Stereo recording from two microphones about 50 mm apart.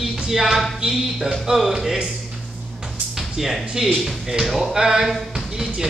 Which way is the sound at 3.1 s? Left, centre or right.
Centre.